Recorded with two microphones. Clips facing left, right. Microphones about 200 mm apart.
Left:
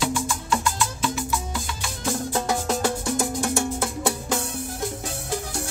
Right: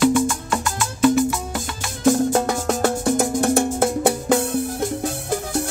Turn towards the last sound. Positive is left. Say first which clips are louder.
# right 8 dB
turn(degrees=-55)  # may be behind; listen again after turning